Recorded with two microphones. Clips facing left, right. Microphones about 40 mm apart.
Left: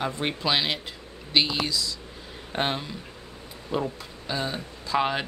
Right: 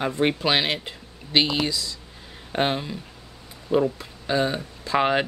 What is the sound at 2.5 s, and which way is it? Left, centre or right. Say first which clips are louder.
Speech: right 4 dB; centre.